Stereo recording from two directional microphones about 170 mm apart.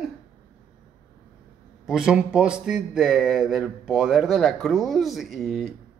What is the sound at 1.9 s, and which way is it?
Speech, 5° right (ahead or behind).